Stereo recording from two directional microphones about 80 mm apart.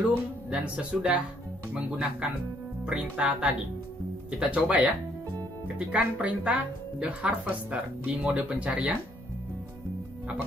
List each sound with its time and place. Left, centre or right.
0.5 s speech: centre